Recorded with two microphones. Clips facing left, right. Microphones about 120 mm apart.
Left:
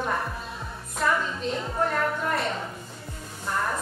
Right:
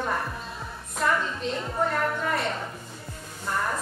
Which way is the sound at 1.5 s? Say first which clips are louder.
Even; centre (ahead or behind).